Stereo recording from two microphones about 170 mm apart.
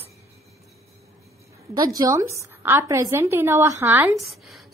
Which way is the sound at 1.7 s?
20° right (ahead or behind).